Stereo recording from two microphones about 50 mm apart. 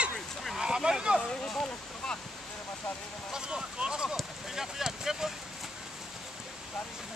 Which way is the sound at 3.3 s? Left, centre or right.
Centre.